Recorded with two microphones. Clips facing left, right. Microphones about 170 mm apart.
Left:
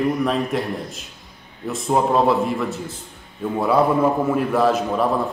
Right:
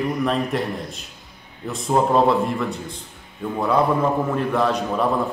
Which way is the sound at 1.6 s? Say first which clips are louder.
Even; centre (ahead or behind).